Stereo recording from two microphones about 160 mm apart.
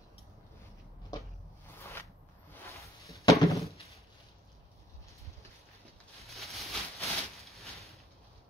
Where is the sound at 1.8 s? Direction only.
15° left (ahead or behind).